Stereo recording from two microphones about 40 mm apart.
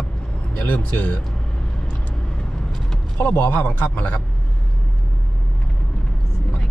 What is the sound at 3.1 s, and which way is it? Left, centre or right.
Speech, left.